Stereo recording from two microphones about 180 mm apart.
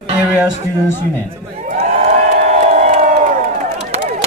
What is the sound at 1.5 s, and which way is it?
Crowd, 45° right (ahead or behind).